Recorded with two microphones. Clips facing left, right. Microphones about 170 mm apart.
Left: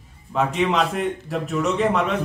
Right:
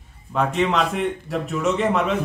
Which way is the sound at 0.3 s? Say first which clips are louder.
Even; centre (ahead or behind).